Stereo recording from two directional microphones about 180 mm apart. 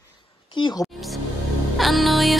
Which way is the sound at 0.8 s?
Centre (ahead or behind).